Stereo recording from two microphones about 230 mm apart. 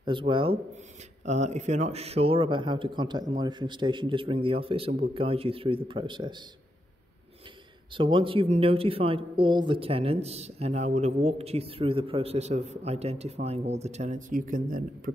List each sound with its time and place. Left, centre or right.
0.0 s speech: right
7.9 s speech: right